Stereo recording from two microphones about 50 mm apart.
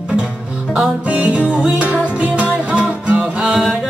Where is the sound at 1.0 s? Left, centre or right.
Right.